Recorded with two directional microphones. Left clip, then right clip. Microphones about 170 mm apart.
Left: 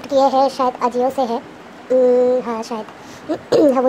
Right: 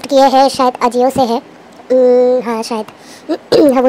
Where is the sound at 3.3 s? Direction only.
25° right (ahead or behind).